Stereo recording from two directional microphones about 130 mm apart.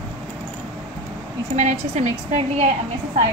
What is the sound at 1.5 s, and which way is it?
A woman's voice, 65° right (ahead or behind).